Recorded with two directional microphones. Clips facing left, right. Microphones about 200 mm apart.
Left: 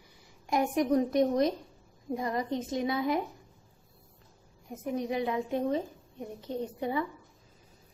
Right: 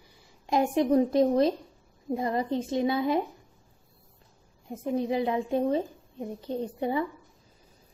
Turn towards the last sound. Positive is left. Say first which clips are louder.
# right 3 dB
turn(degrees=-30)  # may be behind; listen again after turning